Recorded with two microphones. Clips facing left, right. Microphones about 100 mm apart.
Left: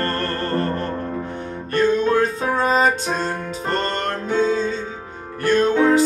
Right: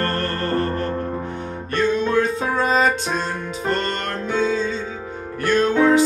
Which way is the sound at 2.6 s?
40° left (ahead or behind).